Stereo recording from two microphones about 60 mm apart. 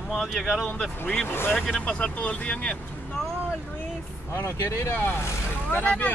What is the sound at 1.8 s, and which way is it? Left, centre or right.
Speech, centre.